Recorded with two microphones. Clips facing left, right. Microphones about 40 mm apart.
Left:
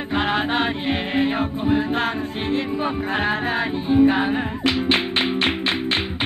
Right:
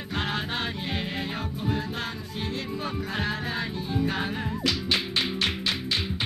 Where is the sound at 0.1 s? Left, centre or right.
Left.